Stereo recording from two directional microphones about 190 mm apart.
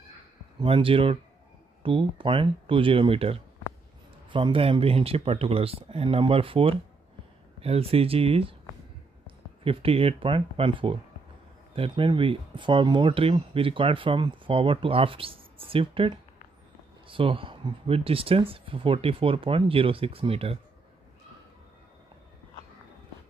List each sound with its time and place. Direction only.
0.6 s speech: 30° right (ahead or behind)
9.7 s speech: 30° right (ahead or behind)